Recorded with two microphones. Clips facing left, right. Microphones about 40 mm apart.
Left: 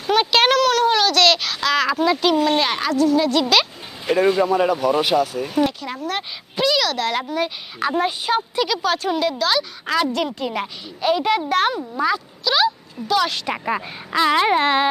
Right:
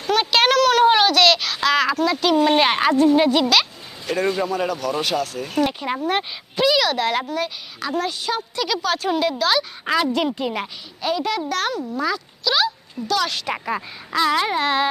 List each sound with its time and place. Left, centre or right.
0.0 s a sound: centre
0.7 s a sound: centre
1.1 s a sound: centre
2.0 s speech: centre
2.4 s speech: centre
4.0 s speech: centre
5.7 s speech: right
6.5 s a sound: centre
7.2 s speech: centre
7.8 s speech: left
8.6 s speech: centre
11.1 s speech: left
12.4 s speech: centre; by 14.9 s left